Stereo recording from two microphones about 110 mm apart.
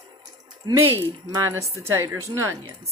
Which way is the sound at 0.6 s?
25° right (ahead or behind).